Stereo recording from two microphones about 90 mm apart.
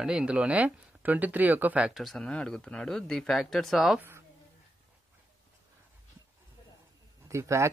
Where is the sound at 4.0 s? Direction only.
25° right (ahead or behind).